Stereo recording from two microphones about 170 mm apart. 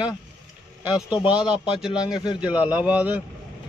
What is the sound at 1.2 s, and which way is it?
Speech, 5° right (ahead or behind).